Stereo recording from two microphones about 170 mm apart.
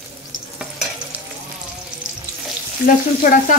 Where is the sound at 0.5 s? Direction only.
5° right (ahead or behind).